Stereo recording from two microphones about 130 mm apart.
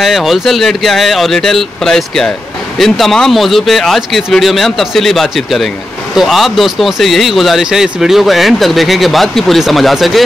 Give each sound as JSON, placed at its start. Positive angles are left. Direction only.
{"t": 0.0, "sound": "speech", "side_deg": 0}